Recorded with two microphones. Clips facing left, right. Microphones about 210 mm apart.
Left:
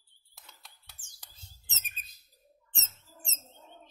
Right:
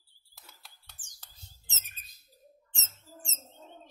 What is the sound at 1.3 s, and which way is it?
Bird, 20° left (ahead or behind).